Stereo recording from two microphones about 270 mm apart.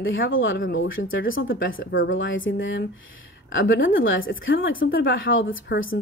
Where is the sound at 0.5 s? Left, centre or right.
Left.